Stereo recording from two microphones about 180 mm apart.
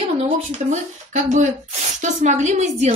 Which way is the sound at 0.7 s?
40° right (ahead or behind).